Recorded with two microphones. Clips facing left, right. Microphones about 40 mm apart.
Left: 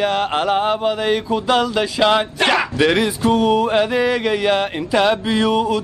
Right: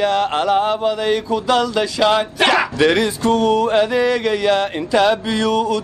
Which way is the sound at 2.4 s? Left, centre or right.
Centre.